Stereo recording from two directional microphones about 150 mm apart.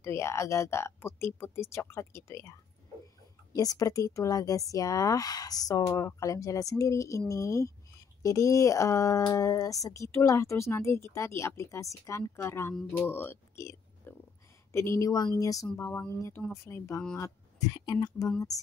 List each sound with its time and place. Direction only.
0.0 s speech: 15° left (ahead or behind)
3.5 s speech: 25° left (ahead or behind)